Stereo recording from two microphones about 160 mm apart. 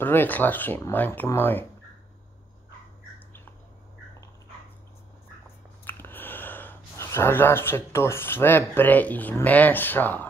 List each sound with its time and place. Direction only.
0.0 s speech: 10° left (ahead or behind)
5.9 s speech: 10° left (ahead or behind)